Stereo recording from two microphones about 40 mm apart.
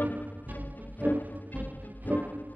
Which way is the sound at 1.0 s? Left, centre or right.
Right.